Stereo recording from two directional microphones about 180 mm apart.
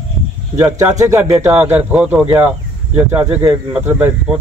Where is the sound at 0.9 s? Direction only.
20° right (ahead or behind).